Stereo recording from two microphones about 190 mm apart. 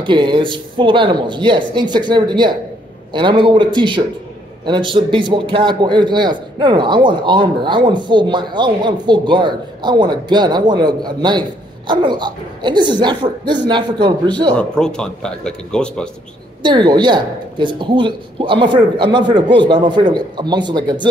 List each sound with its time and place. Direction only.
0.0 s a man's voice: 25° right (ahead or behind)
14.5 s speech: 5° left (ahead or behind)
16.6 s a man's voice: 25° right (ahead or behind)